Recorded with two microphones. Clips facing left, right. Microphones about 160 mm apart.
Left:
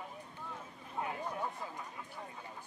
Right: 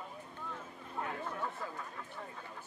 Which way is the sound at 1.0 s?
15° left (ahead or behind).